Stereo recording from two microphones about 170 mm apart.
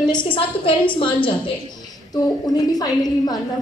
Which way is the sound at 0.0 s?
25° left (ahead or behind).